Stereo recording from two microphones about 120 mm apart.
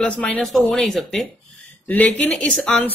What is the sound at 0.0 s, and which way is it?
A woman's voice, 10° left (ahead or behind).